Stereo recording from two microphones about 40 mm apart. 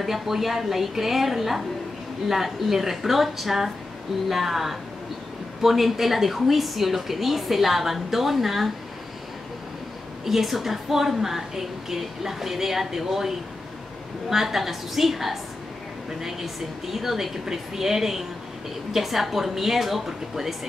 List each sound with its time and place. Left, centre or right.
0.0 s a woman's voice: centre
10.2 s a woman's voice: centre
14.3 s a woman's voice: centre